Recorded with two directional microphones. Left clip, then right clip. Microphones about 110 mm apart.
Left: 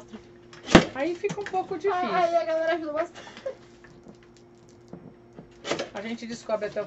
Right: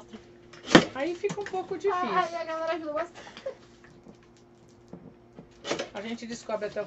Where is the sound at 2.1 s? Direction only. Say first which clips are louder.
Left 5 dB; 35° left (ahead or behind).